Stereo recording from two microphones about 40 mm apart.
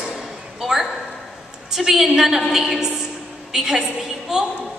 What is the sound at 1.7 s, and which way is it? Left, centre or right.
A woman's voice, centre.